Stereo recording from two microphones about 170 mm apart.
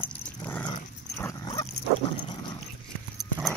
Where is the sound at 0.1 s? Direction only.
10° left (ahead or behind).